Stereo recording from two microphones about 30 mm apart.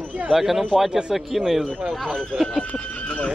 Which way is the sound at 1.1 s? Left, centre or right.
Centre.